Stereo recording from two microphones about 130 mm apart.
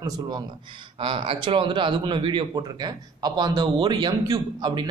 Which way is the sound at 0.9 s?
45° right (ahead or behind).